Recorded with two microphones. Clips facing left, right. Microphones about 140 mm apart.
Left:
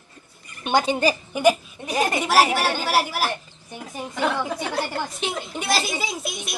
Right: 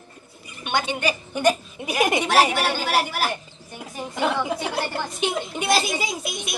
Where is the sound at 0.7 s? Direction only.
35° left (ahead or behind).